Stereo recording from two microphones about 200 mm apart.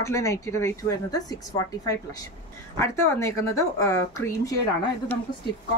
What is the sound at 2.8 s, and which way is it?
A woman's voice, 15° left (ahead or behind).